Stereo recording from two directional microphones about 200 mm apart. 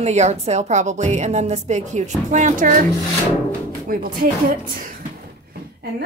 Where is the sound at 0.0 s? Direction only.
35° right (ahead or behind).